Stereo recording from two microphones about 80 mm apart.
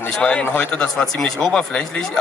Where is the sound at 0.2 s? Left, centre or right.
Centre.